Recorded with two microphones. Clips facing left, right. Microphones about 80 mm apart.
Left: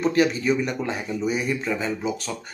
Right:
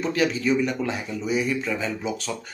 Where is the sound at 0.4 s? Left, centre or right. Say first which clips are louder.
Right 1 dB; centre.